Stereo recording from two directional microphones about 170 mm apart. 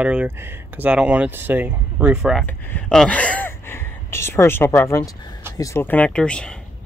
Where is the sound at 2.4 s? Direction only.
10° left (ahead or behind).